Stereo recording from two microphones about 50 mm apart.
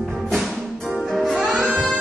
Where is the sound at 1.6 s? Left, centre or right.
Centre.